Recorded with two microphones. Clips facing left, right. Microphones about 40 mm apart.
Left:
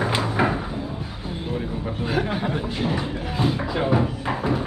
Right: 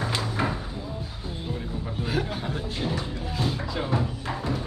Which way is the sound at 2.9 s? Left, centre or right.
Left.